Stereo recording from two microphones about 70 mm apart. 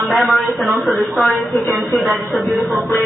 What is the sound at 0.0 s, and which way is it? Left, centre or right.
Speech, centre.